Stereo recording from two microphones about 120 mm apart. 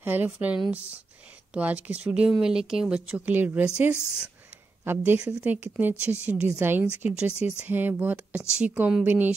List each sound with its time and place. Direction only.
0.0 s speech: 15° right (ahead or behind)